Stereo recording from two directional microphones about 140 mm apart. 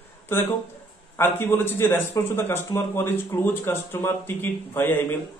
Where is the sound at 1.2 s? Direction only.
15° left (ahead or behind).